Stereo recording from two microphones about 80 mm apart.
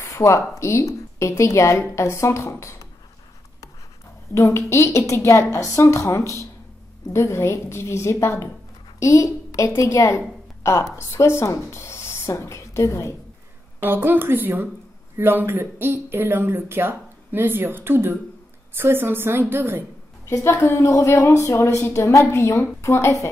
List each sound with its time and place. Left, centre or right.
0.0 s a woman's voice: left
4.3 s a woman's voice: left
13.7 s speech: right
20.2 s a woman's voice: left